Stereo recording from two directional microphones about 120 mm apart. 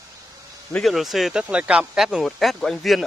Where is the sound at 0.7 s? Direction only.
Centre (ahead or behind).